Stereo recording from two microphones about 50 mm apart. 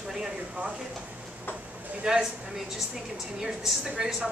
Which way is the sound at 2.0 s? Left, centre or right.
Centre.